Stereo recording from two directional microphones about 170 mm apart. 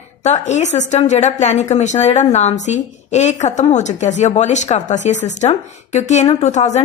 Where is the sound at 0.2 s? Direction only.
45° left (ahead or behind).